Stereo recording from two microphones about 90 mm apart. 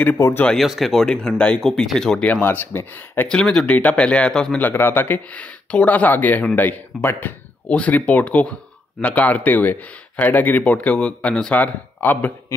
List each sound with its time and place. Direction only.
0.5 s speech: centre (ahead or behind)
1.7 s speech: 5° left (ahead or behind)
2.4 s speech: 20° left (ahead or behind)
3.3 s speech: 10° left (ahead or behind)
4.6 s speech: 20° left (ahead or behind)